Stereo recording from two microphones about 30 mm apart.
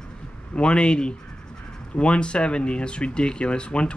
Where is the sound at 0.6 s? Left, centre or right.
Left.